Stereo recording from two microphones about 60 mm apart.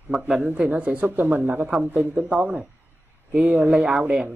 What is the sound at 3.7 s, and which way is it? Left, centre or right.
Speech, centre.